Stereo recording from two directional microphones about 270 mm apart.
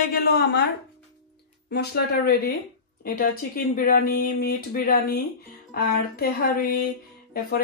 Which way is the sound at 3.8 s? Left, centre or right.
Left.